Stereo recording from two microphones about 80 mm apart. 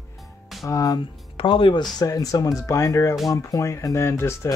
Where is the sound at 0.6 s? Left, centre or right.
Left.